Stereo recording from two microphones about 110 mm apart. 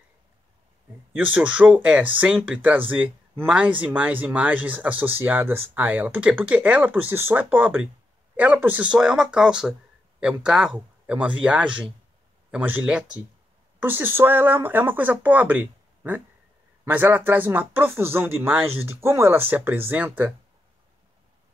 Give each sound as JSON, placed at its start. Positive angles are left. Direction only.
{"t": 1.1, "sound": "speech", "side_deg": -15}